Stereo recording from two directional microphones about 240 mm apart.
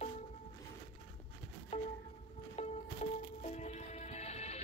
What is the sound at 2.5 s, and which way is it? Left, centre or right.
Music, left.